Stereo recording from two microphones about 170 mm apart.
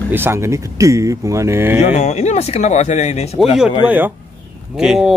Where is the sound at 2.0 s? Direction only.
40° left (ahead or behind).